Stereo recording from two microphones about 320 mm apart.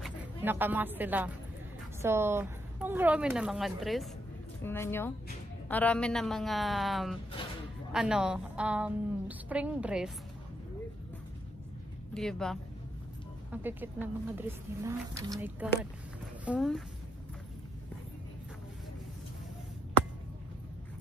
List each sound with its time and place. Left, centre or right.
0.0 s a woman's voice: centre
7.4 s a sound: centre
7.9 s a woman's voice: centre
12.1 s a woman's voice: centre